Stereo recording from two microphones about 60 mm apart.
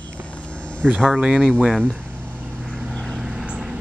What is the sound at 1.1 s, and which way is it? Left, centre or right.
Speech, centre.